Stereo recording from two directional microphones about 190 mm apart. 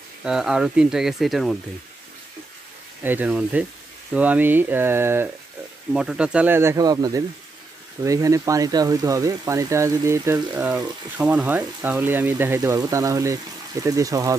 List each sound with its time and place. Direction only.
0.2 s speech: 5° right (ahead or behind)
3.0 s speech: 10° right (ahead or behind)